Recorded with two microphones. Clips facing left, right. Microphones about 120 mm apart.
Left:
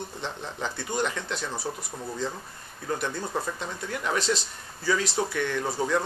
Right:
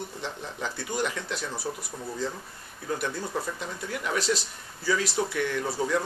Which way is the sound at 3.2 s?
20° left (ahead or behind).